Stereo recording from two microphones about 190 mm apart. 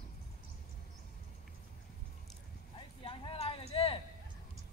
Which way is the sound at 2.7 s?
25° left (ahead or behind).